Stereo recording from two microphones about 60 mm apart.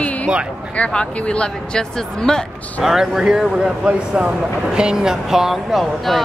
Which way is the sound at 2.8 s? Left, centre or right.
Centre.